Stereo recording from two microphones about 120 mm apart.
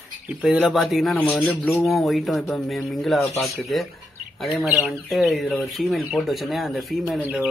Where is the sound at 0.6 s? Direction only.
Centre (ahead or behind).